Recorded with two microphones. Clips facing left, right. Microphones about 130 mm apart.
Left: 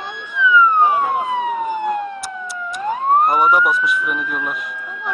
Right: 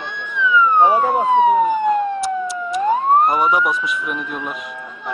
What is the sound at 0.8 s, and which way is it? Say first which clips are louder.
Police car: right 2 dB; 35° right (ahead or behind).